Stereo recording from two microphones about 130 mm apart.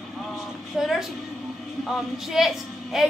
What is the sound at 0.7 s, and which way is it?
A woman's voice, 5° right (ahead or behind).